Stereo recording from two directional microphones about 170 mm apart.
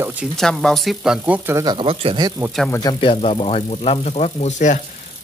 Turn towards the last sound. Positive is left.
turn(degrees=45)  # may be behind; listen again after turning